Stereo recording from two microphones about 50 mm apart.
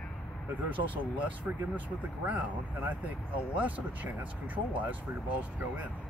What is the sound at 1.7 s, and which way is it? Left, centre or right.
Speech, right.